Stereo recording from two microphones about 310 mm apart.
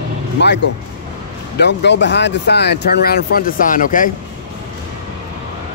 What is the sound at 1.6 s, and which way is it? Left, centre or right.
Speech, left.